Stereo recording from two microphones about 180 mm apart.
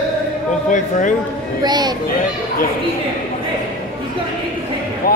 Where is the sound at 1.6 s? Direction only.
25° right (ahead or behind).